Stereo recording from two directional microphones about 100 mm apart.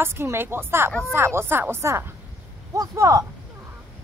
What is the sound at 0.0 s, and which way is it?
Speech, 25° right (ahead or behind).